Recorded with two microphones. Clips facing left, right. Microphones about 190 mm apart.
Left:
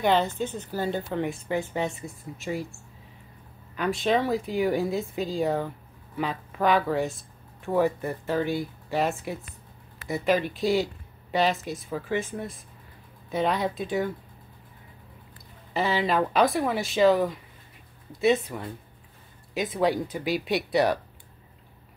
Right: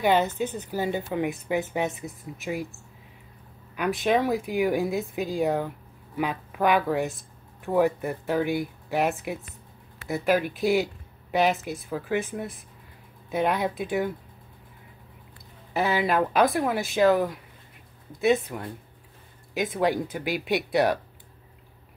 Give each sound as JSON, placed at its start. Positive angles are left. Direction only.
{"t": 0.0, "sound": "speech", "side_deg": -10}
{"t": 1.7, "sound": "speech", "side_deg": -5}
{"t": 2.0, "sound": "speech", "side_deg": -15}
{"t": 3.7, "sound": "a woman's voice", "side_deg": -10}
{"t": 10.0, "sound": "speech", "side_deg": -5}
{"t": 15.7, "sound": "speech", "side_deg": -10}